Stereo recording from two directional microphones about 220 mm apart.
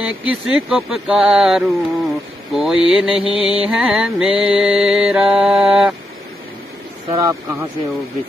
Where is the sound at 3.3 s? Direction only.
20° left (ahead or behind).